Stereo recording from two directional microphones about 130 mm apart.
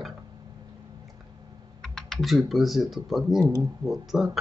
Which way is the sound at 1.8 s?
Centre (ahead or behind).